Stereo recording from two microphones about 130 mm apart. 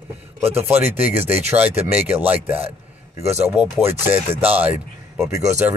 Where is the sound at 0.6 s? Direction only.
15° right (ahead or behind).